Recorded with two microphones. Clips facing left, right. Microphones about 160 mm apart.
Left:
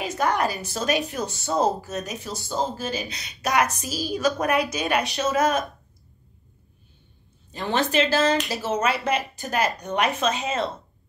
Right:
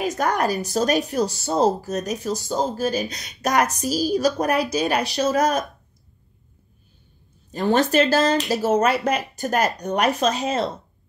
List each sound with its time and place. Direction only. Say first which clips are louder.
0.0 s speech: right 2 dB; 45° right (ahead or behind)
7.5 s speech: right 5 dB; 40° right (ahead or behind)